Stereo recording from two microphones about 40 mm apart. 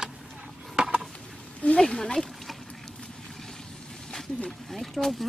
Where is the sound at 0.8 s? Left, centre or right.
Right.